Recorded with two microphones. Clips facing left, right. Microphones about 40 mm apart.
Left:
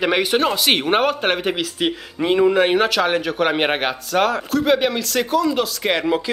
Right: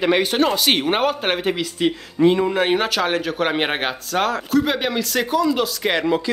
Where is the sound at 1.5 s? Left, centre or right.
Left.